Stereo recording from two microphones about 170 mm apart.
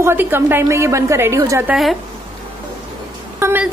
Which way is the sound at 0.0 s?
15° right (ahead or behind).